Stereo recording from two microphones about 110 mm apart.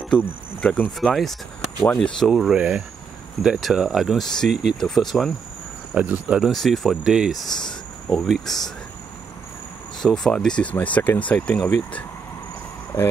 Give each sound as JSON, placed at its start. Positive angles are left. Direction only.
{"t": 0.2, "sound": "speech", "side_deg": 15}
{"t": 0.9, "sound": "speech", "side_deg": 0}
{"t": 5.9, "sound": "speech", "side_deg": -10}
{"t": 6.5, "sound": "speech", "side_deg": 0}
{"t": 9.9, "sound": "speech", "side_deg": 5}
{"t": 12.9, "sound": "speech", "side_deg": 40}